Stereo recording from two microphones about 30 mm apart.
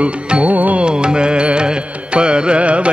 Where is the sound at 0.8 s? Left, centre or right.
Right.